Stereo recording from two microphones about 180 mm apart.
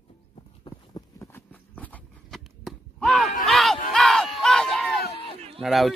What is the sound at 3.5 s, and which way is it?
Crowd, centre (ahead or behind).